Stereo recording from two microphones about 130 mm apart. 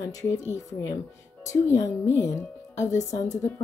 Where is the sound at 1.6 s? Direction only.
20° left (ahead or behind).